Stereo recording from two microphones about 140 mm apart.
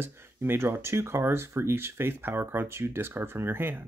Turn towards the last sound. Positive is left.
turn(degrees=-15)  # may be behind; listen again after turning